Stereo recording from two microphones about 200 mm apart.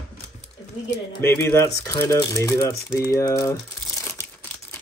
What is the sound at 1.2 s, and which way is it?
Speech, 15° left (ahead or behind).